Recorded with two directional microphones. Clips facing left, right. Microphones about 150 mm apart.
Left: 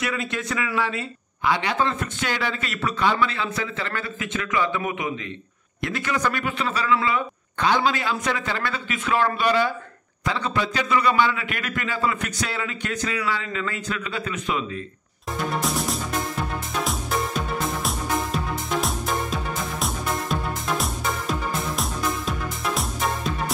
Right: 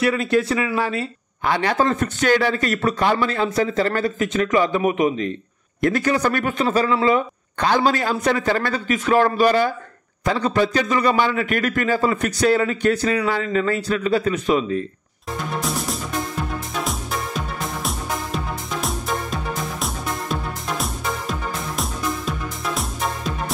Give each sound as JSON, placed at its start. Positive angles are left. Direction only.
{"t": 0.0, "sound": "speech", "side_deg": -35}
{"t": 15.6, "sound": "music", "side_deg": 0}
{"t": 17.8, "sound": "music", "side_deg": 0}